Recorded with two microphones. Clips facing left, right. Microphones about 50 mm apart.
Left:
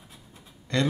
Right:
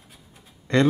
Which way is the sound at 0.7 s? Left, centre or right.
Right.